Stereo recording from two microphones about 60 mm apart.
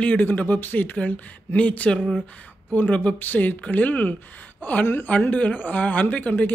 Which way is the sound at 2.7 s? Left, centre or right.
Left.